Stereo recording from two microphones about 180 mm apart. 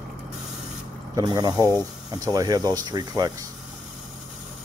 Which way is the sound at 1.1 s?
20° right (ahead or behind).